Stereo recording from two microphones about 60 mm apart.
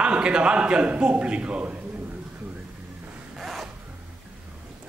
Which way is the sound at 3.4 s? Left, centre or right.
Centre.